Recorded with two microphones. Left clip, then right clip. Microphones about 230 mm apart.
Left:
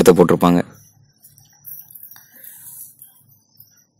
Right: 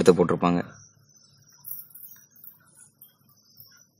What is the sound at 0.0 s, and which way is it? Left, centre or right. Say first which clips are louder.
Speech: left 8 dB; left.